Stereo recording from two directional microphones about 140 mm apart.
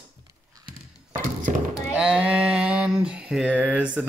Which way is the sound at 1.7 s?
5° right (ahead or behind).